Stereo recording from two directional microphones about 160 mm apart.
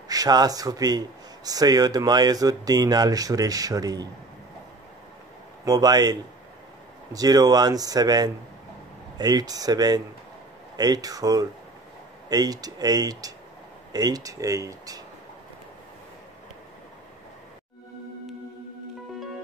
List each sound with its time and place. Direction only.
0.1 s a man's voice: 25° right (ahead or behind)
5.7 s a man's voice: 25° right (ahead or behind)